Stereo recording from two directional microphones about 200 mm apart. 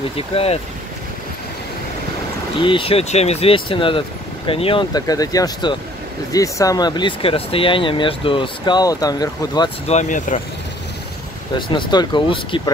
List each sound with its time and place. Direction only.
0.1 s speech: 30° left (ahead or behind)
2.6 s speech: 25° left (ahead or behind)
9.8 s speech: 35° left (ahead or behind)
11.5 s speech: 25° left (ahead or behind)